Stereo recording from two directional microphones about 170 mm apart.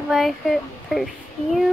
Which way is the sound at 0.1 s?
Centre (ahead or behind).